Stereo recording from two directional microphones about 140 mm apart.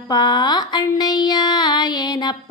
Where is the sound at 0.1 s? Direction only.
30° left (ahead or behind).